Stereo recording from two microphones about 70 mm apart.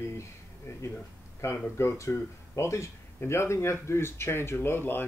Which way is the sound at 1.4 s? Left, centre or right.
Left.